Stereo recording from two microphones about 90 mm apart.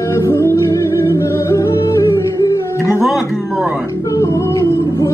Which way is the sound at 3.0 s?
5° right (ahead or behind).